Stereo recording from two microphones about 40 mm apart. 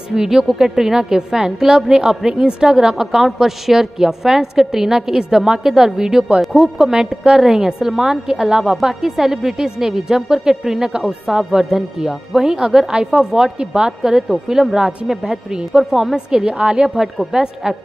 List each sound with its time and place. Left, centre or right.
0.1 s a woman's voice: centre
6.4 s a woman's voice: centre
11.0 s speech: right
12.1 s a woman's voice: centre
15.9 s a woman's voice: centre
16.9 s a woman's voice: centre